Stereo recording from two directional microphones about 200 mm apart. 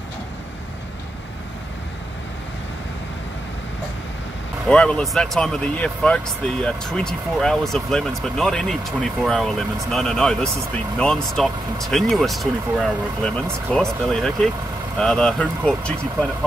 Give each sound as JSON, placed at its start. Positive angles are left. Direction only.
{"t": 4.6, "sound": "speech", "side_deg": 5}